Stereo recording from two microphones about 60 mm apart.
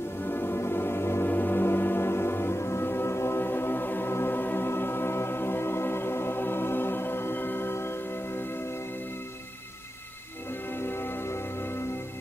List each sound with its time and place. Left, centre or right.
0.2 s gong: left
10.8 s music: left